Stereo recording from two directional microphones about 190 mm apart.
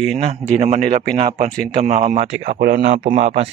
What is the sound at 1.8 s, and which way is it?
Speech, 35° right (ahead or behind).